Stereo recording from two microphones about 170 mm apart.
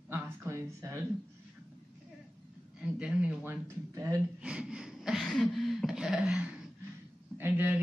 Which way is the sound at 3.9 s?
20° right (ahead or behind).